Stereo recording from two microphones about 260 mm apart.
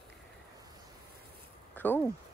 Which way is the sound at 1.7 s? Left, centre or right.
Centre.